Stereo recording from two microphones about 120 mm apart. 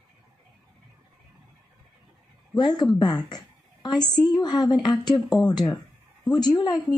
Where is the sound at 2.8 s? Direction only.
35° left (ahead or behind).